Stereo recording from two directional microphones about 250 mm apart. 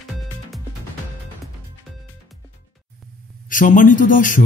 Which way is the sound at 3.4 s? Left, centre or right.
Left.